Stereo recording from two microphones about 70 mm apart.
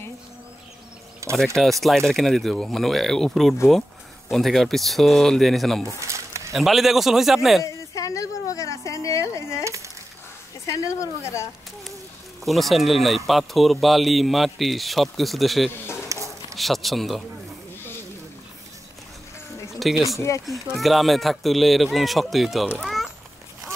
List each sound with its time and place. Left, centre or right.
1.3 s a man's voice: centre
5.9 s a sound: right
6.5 s a man's voice: centre
7.6 s a woman's voice: left
10.7 s a woman's voice: left
12.4 s a man's voice: centre
16.1 s a sound: right
16.5 s a man's voice: centre
19.8 s a man's voice: centre
20.2 s a woman's voice: left
20.4 s a man's voice: centre
22.8 s a sound: centre